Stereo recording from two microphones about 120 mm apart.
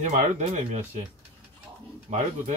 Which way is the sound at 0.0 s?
80° right.